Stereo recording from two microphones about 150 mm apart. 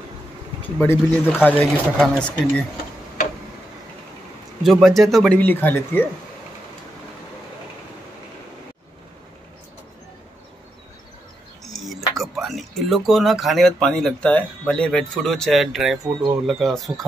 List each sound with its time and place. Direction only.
0.7 s speech: 15° left (ahead or behind)
4.6 s speech: centre (ahead or behind)
5.4 s speech: 10° left (ahead or behind)
12.2 s speech: centre (ahead or behind)
16.0 s speech: 30° right (ahead or behind)
16.4 s speech: centre (ahead or behind)